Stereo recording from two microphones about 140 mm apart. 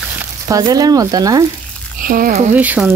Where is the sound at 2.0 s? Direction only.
85° right.